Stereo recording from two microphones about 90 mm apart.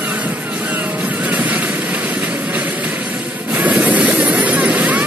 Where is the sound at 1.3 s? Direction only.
15° right (ahead or behind).